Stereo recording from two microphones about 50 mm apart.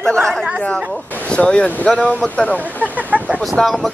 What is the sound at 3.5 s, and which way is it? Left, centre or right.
Speech, centre.